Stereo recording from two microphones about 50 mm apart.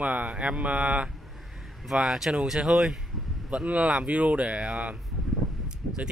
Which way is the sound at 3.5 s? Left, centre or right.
Right.